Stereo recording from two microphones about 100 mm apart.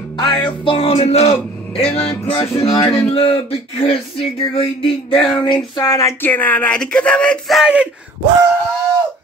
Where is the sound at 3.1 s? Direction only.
70° left (ahead or behind).